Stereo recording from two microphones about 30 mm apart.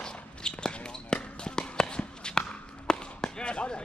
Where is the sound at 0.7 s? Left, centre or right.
Left.